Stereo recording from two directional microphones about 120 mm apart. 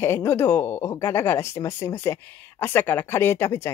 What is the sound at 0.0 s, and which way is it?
Speech, 20° left (ahead or behind).